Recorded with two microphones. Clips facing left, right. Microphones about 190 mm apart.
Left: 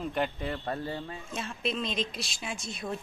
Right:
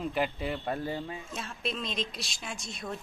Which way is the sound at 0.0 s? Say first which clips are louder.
Even; centre (ahead or behind).